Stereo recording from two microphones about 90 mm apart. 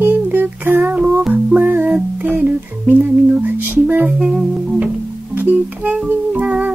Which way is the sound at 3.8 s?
20° right (ahead or behind).